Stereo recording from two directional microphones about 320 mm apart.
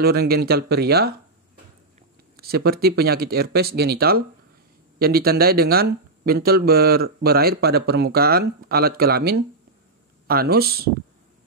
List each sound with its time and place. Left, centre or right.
0.0 s speech: right
2.3 s speech: right